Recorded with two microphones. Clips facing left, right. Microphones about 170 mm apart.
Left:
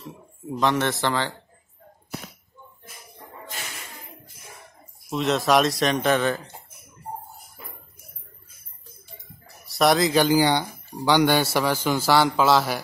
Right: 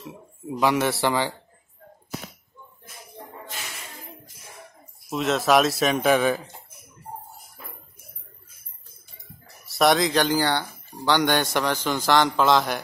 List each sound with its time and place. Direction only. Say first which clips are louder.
0.5 s a man's voice: right 1 dB; 10° right (ahead or behind)
5.1 s speech: even; centre (ahead or behind)
9.7 s speech: even; centre (ahead or behind)